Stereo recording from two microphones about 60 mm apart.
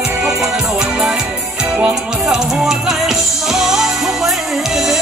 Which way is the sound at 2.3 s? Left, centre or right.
Centre.